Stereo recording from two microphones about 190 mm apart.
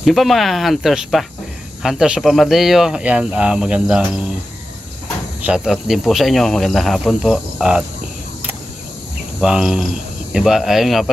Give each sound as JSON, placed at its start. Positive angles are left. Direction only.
{"t": 0.0, "sound": "speech", "side_deg": 0}
{"t": 5.4, "sound": "speech", "side_deg": -5}
{"t": 9.4, "sound": "speech", "side_deg": -5}